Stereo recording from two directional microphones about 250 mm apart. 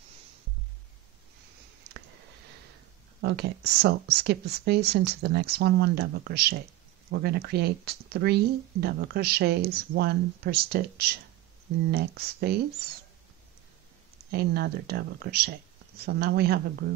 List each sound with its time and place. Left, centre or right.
3.2 s speech: right
14.3 s speech: right